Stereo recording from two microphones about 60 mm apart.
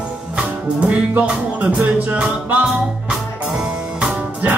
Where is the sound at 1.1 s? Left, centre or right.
Right.